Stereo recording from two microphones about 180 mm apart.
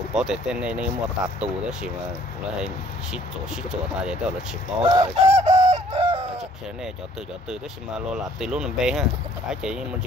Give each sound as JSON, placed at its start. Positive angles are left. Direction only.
{"t": 0.1, "sound": "speech", "side_deg": -5}
{"t": 3.9, "sound": "speech", "side_deg": -5}
{"t": 4.8, "sound": "fowl", "side_deg": -25}
{"t": 5.1, "sound": "bird", "side_deg": -40}
{"t": 8.1, "sound": "speech", "side_deg": -5}